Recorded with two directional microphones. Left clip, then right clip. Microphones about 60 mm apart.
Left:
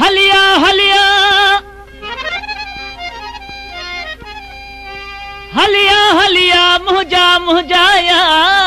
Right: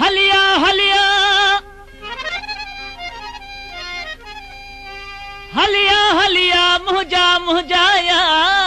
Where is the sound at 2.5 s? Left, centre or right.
Centre.